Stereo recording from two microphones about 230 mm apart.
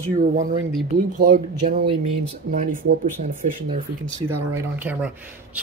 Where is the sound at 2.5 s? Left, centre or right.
Right.